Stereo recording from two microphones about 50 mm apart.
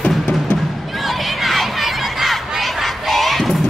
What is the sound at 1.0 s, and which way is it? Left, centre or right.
Crowd, centre.